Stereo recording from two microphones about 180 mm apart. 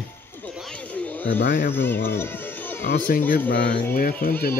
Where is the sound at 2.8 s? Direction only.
55° left (ahead or behind).